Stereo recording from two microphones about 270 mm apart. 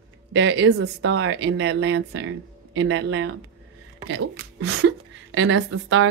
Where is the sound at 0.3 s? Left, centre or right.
Right.